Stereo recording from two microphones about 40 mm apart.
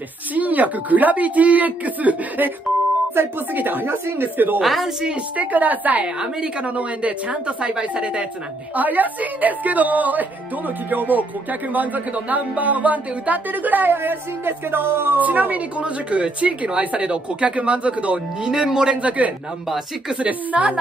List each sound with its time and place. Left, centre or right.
0.3 s speech: right
3.5 s a woman's voice: right
4.6 s a woman's voice: centre
5.4 s a woman's voice: right
8.7 s speech: right
15.1 s speech: right
15.8 s speech: right
18.4 s a woman's voice: centre
19.0 s speech: right